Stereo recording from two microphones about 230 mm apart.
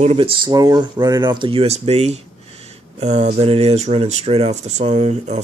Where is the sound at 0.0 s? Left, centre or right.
Right.